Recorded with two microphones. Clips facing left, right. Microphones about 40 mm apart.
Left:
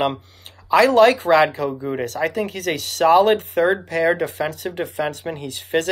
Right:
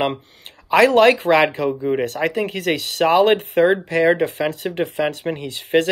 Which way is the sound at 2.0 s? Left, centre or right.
Right.